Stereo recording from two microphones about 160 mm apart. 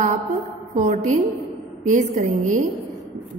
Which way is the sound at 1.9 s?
50° right (ahead or behind).